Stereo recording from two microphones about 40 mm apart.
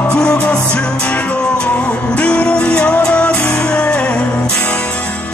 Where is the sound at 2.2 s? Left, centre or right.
Left.